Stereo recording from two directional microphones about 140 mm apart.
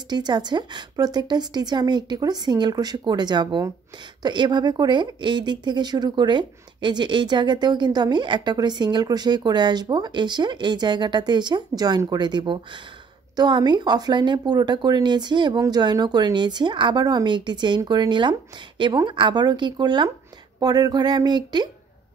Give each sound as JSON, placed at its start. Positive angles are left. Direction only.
{"t": 0.1, "sound": "speech", "side_deg": -30}